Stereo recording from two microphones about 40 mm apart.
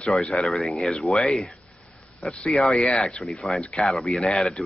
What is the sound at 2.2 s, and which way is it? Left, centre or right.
Speech, left.